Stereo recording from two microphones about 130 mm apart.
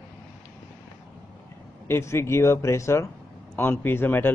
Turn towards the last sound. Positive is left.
turn(degrees=15)  # may be behind; listen again after turning